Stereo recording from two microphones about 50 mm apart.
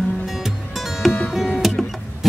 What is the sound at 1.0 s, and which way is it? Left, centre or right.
Music, centre.